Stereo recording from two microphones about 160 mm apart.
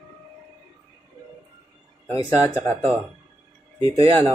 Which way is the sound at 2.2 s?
20° left (ahead or behind).